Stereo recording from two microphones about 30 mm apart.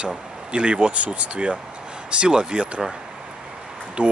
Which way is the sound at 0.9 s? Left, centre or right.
Right.